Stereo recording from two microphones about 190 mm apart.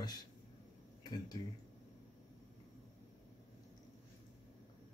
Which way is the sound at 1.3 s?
20° left (ahead or behind).